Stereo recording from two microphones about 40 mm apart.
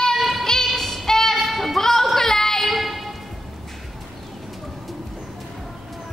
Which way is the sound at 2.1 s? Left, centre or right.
Centre.